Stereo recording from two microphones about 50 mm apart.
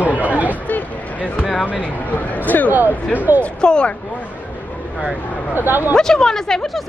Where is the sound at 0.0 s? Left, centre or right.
Right.